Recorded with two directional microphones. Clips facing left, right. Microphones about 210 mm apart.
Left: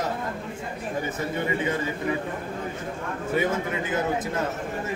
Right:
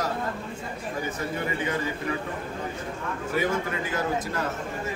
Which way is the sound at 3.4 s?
20° left (ahead or behind).